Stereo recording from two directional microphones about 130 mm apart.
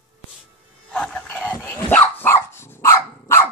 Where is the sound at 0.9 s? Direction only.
10° left (ahead or behind).